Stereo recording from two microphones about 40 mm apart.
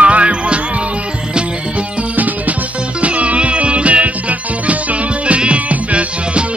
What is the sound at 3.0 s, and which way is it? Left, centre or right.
Music, right.